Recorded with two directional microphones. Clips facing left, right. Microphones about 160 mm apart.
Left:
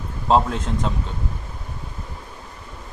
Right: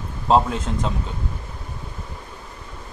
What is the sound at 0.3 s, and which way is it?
Speech, centre (ahead or behind).